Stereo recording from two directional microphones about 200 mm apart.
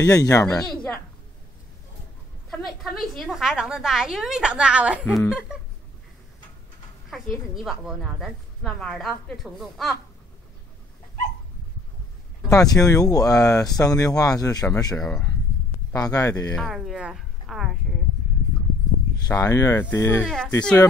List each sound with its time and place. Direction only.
0.0 s speech: 15° left (ahead or behind)
2.5 s a woman's voice: centre (ahead or behind)
5.0 s speech: 10° left (ahead or behind)
7.1 s a woman's voice: centre (ahead or behind)
12.4 s speech: 15° left (ahead or behind)
15.0 s a woman's voice: 5° left (ahead or behind)
15.9 s speech: 15° left (ahead or behind)
16.5 s a woman's voice: centre (ahead or behind)
19.2 s speech: 15° left (ahead or behind)
20.2 s a woman's voice: 5° left (ahead or behind)